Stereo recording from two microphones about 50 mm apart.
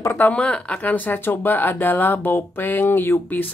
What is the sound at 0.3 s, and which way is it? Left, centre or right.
Speech, left.